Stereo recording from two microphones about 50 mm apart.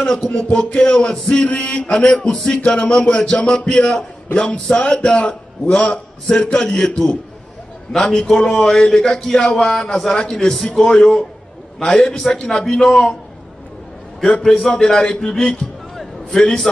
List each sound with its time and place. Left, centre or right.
0.0 s music: centre
7.9 s music: centre
14.3 s music: centre
15.0 s a man's voice: left
16.0 s a sound: centre